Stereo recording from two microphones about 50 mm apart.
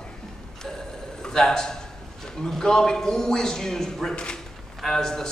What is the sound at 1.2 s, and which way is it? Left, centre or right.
A man's voice, centre.